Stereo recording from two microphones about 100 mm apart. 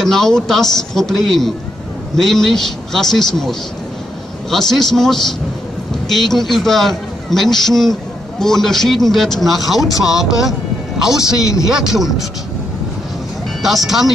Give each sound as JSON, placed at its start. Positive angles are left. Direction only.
{"t": 0.0, "sound": "a man's voice", "side_deg": 5}
{"t": 11.3, "sound": "a man's voice", "side_deg": 35}
{"t": 11.6, "sound": "a man's voice", "side_deg": -5}
{"t": 13.6, "sound": "speech", "side_deg": 0}